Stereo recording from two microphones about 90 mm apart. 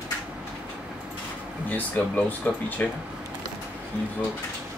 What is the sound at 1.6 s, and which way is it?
Speech, 20° left (ahead or behind).